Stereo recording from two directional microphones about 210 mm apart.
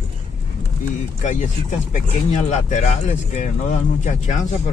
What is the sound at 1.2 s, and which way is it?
Speech, 35° left (ahead or behind).